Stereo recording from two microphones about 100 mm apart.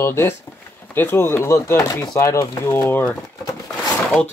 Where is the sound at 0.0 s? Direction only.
25° left (ahead or behind).